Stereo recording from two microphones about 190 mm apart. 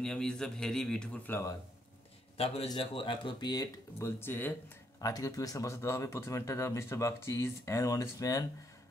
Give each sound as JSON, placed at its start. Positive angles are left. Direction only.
{"t": 0.0, "sound": "speech", "side_deg": 5}
{"t": 2.3, "sound": "speech", "side_deg": 30}